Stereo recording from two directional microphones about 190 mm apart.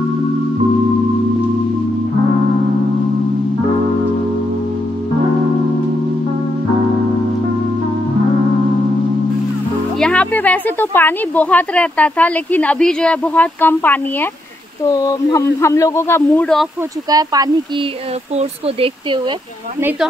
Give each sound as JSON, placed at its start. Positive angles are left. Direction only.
{"t": 9.9, "sound": "a woman's voice", "side_deg": 5}
{"t": 17.1, "sound": "speech", "side_deg": -20}
{"t": 18.3, "sound": "speech", "side_deg": -30}